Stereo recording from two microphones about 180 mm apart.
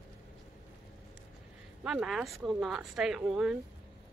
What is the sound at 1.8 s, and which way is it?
Speech, centre (ahead or behind).